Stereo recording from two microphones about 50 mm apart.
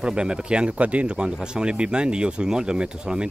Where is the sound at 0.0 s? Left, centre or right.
Centre.